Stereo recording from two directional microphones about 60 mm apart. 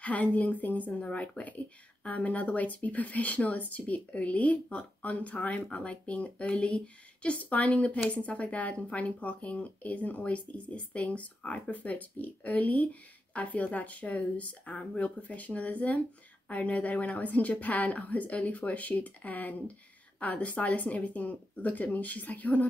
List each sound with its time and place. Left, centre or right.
0.0 s speech: left